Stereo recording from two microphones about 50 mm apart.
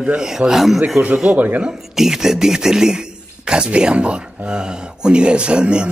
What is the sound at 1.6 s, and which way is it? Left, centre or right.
A man's voice, centre.